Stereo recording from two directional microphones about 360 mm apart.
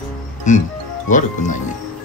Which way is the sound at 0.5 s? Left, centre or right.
Centre.